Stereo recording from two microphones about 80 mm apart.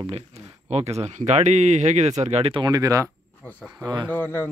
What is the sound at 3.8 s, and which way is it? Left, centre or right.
Speech, right.